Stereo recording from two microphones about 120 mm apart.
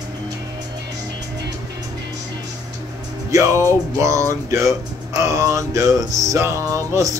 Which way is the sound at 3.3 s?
25° right (ahead or behind).